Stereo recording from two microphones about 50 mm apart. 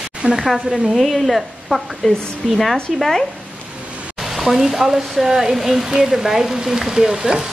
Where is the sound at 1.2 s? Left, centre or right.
Centre.